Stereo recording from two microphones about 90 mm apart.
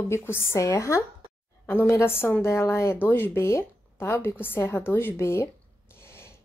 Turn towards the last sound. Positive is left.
turn(degrees=25)  # may be behind; listen again after turning